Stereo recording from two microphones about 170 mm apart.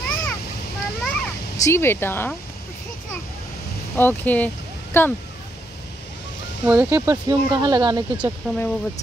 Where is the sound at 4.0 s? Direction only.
10° left (ahead or behind).